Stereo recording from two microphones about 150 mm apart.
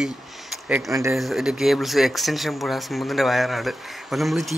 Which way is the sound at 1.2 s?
Centre (ahead or behind).